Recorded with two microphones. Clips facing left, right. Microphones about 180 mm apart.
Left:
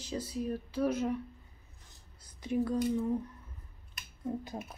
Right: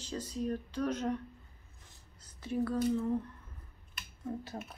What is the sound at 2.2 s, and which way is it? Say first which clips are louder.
Speech: left 2 dB; 15° left (ahead or behind).